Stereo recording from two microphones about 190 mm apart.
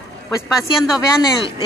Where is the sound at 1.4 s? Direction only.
25° left (ahead or behind).